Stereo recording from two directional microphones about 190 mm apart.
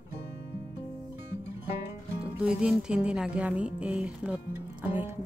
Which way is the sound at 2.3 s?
5° right (ahead or behind).